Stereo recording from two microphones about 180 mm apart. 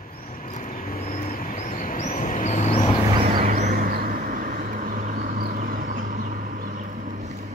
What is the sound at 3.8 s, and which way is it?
Vehicle, 50° right (ahead or behind).